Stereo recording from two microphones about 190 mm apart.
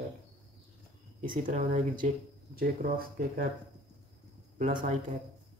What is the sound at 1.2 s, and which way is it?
Speech, 45° right (ahead or behind).